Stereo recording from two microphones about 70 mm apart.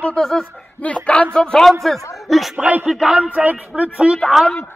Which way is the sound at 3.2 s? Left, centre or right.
Right.